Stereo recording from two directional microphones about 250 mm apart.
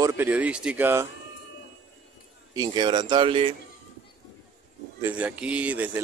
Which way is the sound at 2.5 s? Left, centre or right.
Centre.